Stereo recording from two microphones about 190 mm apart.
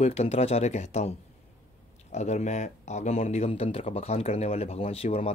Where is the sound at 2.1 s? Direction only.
35° left (ahead or behind).